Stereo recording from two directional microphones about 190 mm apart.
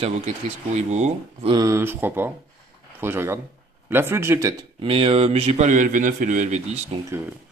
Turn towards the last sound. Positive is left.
turn(degrees=-35)  # may be behind; listen again after turning